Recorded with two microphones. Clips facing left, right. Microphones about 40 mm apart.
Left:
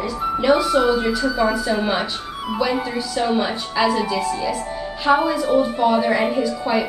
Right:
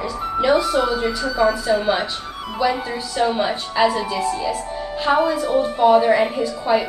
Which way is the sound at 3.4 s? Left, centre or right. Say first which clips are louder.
Right 2 dB; centre.